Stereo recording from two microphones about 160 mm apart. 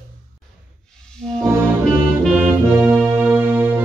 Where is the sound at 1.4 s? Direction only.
15° right (ahead or behind).